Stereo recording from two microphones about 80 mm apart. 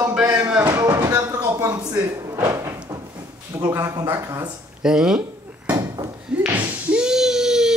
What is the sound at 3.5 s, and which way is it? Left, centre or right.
Speech, right.